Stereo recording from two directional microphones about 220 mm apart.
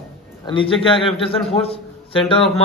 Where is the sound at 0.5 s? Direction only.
25° left (ahead or behind).